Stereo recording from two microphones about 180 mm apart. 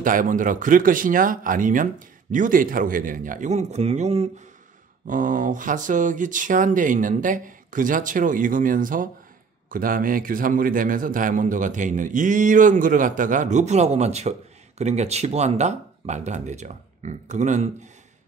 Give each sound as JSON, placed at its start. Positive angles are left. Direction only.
{"t": 0.0, "sound": "a man's voice", "side_deg": -50}